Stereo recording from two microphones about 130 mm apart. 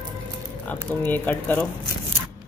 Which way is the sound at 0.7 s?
15° left (ahead or behind).